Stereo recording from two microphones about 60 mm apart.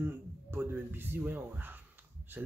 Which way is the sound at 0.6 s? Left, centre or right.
Right.